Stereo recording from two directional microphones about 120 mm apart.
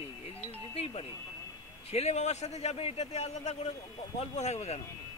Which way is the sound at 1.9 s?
65° left (ahead or behind).